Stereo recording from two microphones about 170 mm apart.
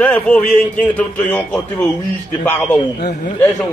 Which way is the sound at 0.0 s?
5° left (ahead or behind).